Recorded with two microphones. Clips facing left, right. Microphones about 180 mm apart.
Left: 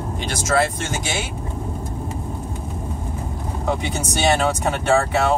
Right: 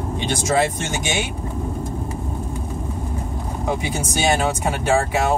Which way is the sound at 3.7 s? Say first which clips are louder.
Left 1 dB; 10° right (ahead or behind).